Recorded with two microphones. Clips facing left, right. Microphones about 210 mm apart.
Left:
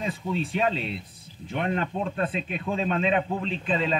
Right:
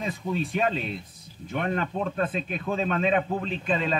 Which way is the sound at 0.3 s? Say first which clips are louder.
Even; 45° right (ahead or behind).